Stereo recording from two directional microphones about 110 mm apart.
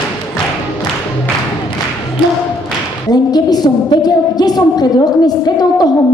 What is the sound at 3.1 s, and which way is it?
A woman's voice, 40° left (ahead or behind).